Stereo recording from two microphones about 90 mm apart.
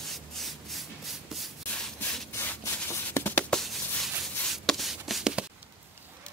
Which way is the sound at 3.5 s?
5° left (ahead or behind).